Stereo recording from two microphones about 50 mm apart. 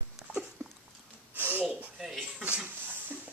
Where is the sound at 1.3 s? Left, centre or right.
Right.